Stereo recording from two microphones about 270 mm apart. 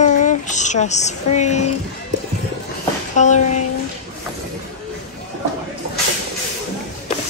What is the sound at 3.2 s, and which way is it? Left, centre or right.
Speech, left.